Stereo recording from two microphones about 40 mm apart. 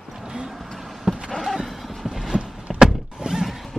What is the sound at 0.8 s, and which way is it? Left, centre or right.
Vehicle, centre.